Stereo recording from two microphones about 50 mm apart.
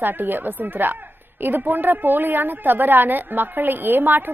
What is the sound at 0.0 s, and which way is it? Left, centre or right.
A woman's voice, right.